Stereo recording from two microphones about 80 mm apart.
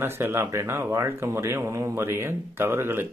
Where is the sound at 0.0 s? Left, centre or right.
Right.